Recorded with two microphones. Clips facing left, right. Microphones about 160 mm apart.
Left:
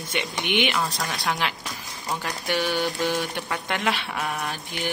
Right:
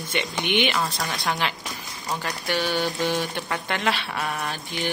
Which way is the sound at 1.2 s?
Centre (ahead or behind).